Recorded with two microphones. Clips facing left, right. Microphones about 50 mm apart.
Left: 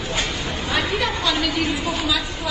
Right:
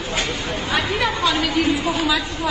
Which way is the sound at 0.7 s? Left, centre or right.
Centre.